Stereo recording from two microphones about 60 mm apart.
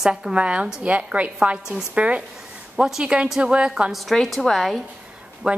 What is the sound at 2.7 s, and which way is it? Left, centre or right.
Speech, centre.